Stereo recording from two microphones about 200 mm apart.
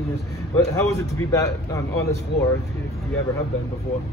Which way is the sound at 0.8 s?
15° left (ahead or behind).